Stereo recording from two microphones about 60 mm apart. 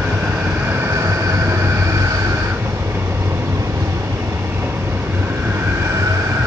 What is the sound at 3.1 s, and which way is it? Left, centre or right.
Vehicle, right.